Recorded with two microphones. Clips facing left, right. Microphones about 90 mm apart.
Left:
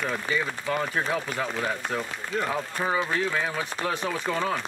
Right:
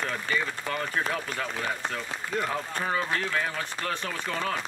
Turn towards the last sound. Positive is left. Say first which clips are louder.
# left 4 dB
turn(degrees=10)  # may be behind; listen again after turning